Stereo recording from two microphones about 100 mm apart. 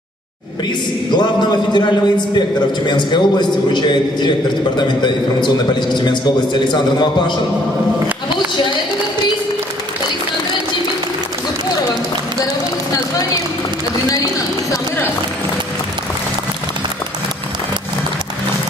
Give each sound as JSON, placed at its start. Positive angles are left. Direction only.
{"t": 1.1, "sound": "a man's voice", "side_deg": 45}